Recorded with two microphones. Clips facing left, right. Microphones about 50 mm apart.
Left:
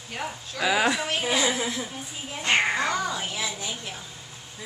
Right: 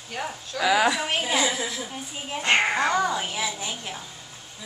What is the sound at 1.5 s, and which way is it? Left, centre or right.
Speech, left.